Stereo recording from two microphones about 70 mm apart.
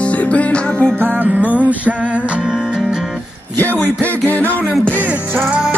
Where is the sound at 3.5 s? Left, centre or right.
Left.